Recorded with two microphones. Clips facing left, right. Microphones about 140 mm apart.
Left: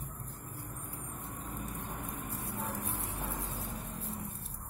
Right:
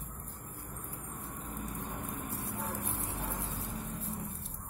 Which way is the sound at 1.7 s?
70° right (ahead or behind).